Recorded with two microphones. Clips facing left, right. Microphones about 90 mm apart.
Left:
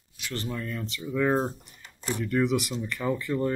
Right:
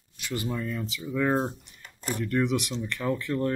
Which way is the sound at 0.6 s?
Centre (ahead or behind).